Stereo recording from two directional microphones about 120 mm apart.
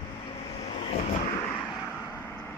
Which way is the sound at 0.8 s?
65° left (ahead or behind).